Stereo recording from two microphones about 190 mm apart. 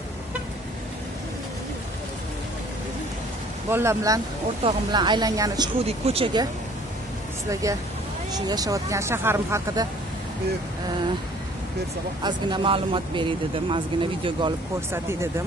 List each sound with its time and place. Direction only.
3.7 s speech: 15° right (ahead or behind)
5.9 s speech: 30° right (ahead or behind)
7.6 s speech: 15° right (ahead or behind)
12.2 s speech: 25° right (ahead or behind)
14.9 s speech: 15° right (ahead or behind)